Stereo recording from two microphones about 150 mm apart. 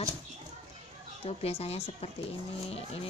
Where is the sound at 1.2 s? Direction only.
45° left (ahead or behind).